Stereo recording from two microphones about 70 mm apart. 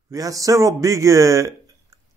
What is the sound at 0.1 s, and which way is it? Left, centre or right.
A man's voice, right.